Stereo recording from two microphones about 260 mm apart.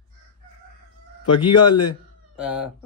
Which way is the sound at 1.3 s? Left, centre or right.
Centre.